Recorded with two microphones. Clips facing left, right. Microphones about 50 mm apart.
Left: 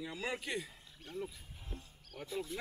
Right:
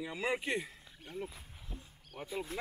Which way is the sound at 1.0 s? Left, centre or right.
Centre.